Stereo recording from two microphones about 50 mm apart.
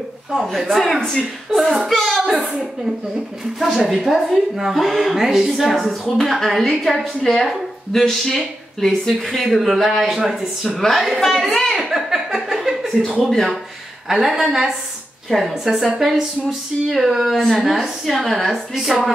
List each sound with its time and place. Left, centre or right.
0.5 s speech: centre
3.5 s a woman's voice: centre
11.7 s a sound: centre
12.8 s a woman's voice: centre